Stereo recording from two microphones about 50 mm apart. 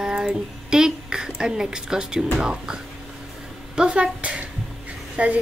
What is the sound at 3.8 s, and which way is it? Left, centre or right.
A woman's voice, right.